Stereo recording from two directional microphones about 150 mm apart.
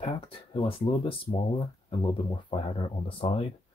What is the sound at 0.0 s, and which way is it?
Speech, 35° left (ahead or behind).